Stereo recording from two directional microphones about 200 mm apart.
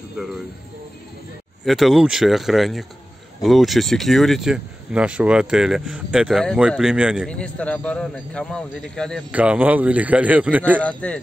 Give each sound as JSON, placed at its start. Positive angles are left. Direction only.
{"t": 1.7, "sound": "speech", "side_deg": 0}
{"t": 9.3, "sound": "speech", "side_deg": -5}
{"t": 10.8, "sound": "speech", "side_deg": 5}